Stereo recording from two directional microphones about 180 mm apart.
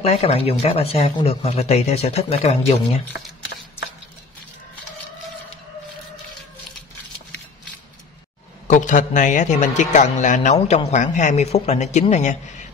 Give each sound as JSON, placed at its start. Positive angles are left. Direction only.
{"t": 0.0, "sound": "a man's voice", "side_deg": 35}
{"t": 8.6, "sound": "a man's voice", "side_deg": 45}